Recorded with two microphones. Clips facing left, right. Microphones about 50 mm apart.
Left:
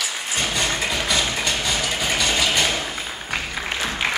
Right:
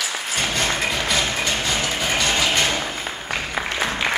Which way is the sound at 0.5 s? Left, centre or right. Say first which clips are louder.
Right 1 dB; centre.